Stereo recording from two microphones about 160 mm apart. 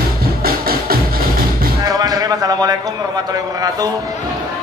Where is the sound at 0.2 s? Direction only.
70° right (ahead or behind).